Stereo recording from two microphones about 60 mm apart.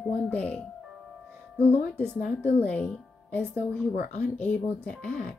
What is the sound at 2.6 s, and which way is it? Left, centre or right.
Speech, left.